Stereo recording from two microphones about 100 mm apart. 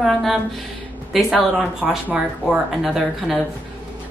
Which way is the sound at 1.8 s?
5° right (ahead or behind).